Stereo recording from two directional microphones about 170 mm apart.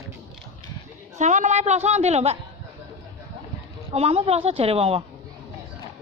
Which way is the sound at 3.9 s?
35° right (ahead or behind).